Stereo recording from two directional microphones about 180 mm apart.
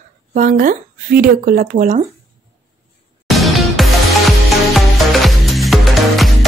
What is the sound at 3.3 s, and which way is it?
Music, centre (ahead or behind).